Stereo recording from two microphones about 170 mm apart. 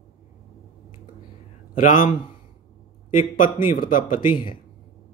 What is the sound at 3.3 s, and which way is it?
Speech, 55° left (ahead or behind).